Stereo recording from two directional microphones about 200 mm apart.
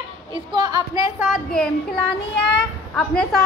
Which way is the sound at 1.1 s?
5° right (ahead or behind).